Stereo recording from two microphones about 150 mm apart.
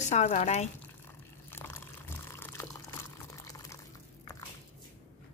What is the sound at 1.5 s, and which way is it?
Water, 15° left (ahead or behind).